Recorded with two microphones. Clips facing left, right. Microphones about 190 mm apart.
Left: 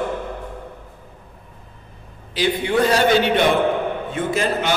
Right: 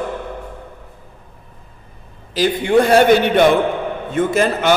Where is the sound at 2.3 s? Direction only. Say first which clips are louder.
Right 5 dB; 45° right (ahead or behind).